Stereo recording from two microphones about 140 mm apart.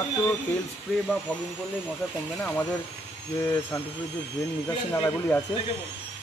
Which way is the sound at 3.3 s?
20° left (ahead or behind).